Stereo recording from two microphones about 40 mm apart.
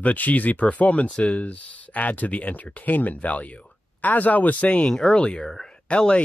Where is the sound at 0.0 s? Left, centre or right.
Left.